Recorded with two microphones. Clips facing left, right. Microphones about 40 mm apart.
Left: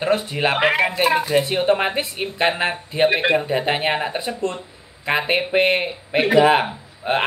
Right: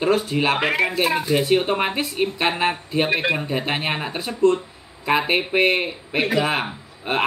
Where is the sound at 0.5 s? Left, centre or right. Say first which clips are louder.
Left 2 dB; centre.